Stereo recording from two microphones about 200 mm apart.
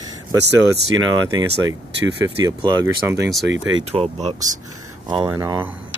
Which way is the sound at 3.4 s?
70° right (ahead or behind).